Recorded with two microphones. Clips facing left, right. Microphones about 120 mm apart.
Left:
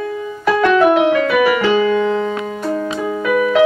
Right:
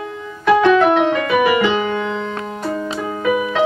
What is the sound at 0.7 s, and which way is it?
Keyboard, centre (ahead or behind).